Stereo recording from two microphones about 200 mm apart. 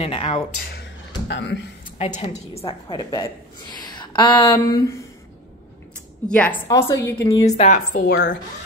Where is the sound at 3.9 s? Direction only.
25° left (ahead or behind).